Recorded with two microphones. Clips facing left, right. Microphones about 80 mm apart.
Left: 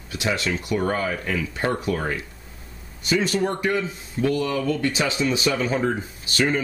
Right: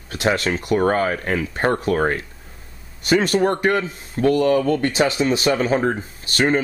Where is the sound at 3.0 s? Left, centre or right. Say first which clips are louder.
Right 5 dB; right.